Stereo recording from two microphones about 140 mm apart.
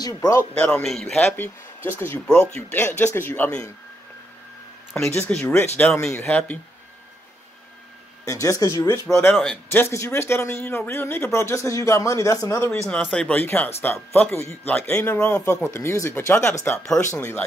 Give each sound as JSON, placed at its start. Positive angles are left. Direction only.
{"t": 0.0, "sound": "speech", "side_deg": 25}
{"t": 0.4, "sound": "speech", "side_deg": 5}
{"t": 2.2, "sound": "speech", "side_deg": 5}
{"t": 5.3, "sound": "speech", "side_deg": 10}
{"t": 8.3, "sound": "speech", "side_deg": 20}
{"t": 9.3, "sound": "speech", "side_deg": 5}
{"t": 9.7, "sound": "speech", "side_deg": 15}
{"t": 12.7, "sound": "speech", "side_deg": 5}
{"t": 15.6, "sound": "speech", "side_deg": 20}